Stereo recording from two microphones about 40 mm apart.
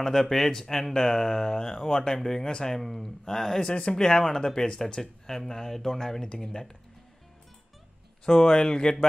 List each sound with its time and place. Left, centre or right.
0.0 s speech: centre
3.6 s speech: left
8.3 s speech: centre